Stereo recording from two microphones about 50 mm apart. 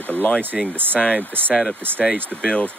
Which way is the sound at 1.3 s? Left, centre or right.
Right.